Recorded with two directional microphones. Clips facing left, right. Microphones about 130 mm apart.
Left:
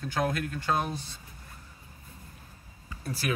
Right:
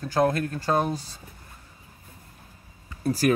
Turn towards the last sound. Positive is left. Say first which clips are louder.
# right 10 dB
turn(degrees=-40)  # may be behind; listen again after turning